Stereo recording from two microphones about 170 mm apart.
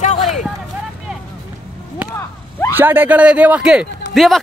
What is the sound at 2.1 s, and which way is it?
Whip, 20° left (ahead or behind).